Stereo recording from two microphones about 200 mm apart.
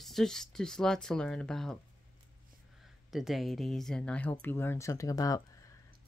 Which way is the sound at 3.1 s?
Centre (ahead or behind).